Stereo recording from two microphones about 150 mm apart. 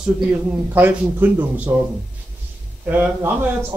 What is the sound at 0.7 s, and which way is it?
Speech, 10° right (ahead or behind).